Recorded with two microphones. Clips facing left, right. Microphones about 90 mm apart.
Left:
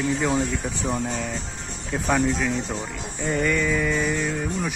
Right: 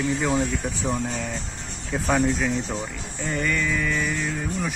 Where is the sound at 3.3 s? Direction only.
5° left (ahead or behind).